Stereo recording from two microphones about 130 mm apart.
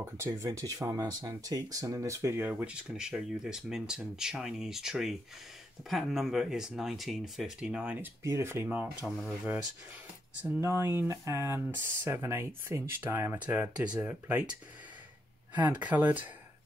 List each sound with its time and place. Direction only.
0.0 s speech: 20° right (ahead or behind)
8.2 s speech: 20° right (ahead or behind)
8.6 s speech: 5° right (ahead or behind)
10.4 s speech: 15° right (ahead or behind)
15.8 s speech: 10° right (ahead or behind)